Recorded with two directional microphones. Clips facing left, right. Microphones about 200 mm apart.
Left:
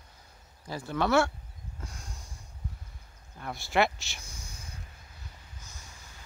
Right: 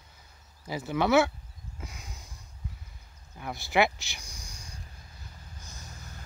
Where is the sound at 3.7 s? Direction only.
10° right (ahead or behind).